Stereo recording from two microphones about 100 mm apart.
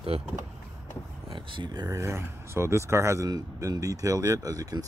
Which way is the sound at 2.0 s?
25° right (ahead or behind).